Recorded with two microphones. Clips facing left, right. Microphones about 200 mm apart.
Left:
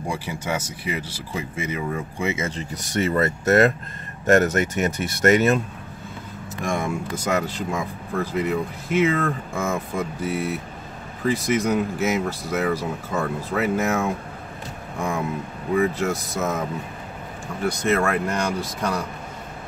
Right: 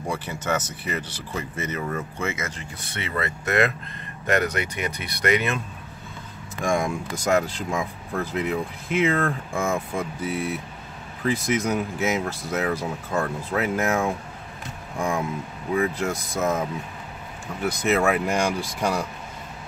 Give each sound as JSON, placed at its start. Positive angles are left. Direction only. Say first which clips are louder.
{"t": 0.1, "sound": "speech", "louder": "right 1 dB", "side_deg": 10}
{"t": 2.3, "sound": "speech", "louder": "left 5 dB", "side_deg": 30}
{"t": 6.6, "sound": "speech", "louder": "right 1 dB", "side_deg": 5}
{"t": 17.8, "sound": "speech", "louder": "right 1 dB", "side_deg": -5}